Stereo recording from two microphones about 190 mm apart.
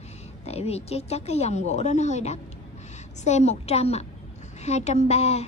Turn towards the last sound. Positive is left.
turn(degrees=35)  # may be behind; listen again after turning